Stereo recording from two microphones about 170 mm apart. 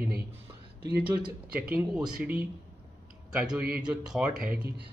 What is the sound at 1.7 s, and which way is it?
Speech, 5° right (ahead or behind).